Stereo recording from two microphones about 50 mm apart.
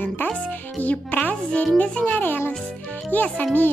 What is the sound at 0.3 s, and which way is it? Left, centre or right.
Speech, left.